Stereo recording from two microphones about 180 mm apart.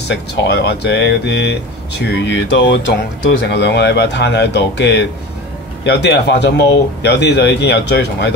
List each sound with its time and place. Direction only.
0.1 s speech: 75° left (ahead or behind); by 2.8 s 90° left
3.3 s speech: 70° left (ahead or behind)